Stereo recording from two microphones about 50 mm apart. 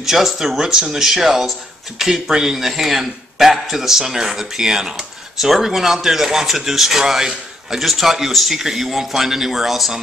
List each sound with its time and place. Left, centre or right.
0.0 s speech: centre